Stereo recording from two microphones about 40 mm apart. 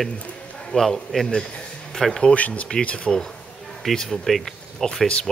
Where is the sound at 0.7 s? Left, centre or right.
Centre.